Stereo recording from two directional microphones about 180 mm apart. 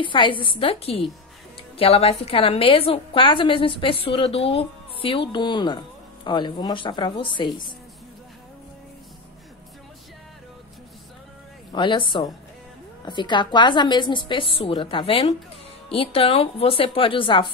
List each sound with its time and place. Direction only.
0.0 s a woman's voice: 25° left (ahead or behind)
11.7 s a woman's voice: 25° left (ahead or behind)